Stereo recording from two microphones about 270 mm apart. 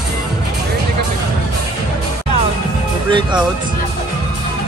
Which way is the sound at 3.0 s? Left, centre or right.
Centre.